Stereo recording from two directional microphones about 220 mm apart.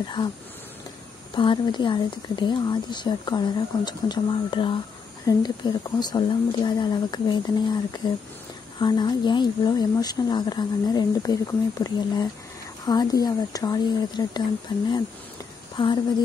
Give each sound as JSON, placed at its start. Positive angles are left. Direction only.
{"t": 0.0, "sound": "speech", "side_deg": 20}
{"t": 1.3, "sound": "speech", "side_deg": 20}